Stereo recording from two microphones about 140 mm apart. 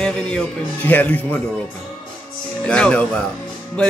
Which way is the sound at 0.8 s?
10° left (ahead or behind).